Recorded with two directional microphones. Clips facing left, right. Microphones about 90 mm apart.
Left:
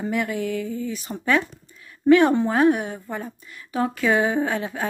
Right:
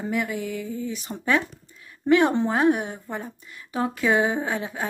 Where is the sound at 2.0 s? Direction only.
20° right (ahead or behind).